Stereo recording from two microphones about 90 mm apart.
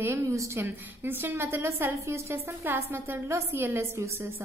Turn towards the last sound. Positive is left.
turn(degrees=-30)  # may be behind; listen again after turning